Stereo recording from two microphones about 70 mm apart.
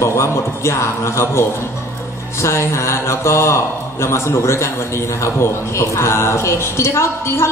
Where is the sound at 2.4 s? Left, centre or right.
Left.